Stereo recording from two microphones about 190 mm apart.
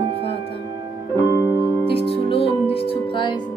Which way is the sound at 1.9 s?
30° left (ahead or behind).